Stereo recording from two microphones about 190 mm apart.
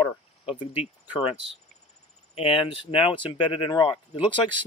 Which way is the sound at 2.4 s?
30° left (ahead or behind).